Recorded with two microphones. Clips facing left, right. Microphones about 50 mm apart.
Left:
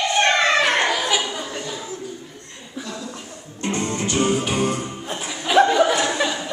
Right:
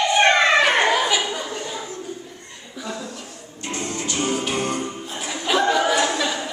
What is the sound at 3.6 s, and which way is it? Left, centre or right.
Music, left.